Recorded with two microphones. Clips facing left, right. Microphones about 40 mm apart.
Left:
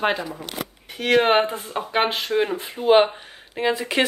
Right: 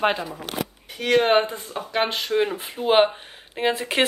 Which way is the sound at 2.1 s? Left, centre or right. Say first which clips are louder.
Even; centre.